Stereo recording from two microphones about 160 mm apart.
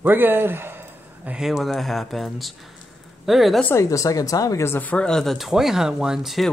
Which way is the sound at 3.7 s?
20° left (ahead or behind).